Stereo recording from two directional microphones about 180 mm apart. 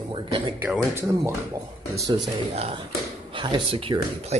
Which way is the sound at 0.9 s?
15° right (ahead or behind).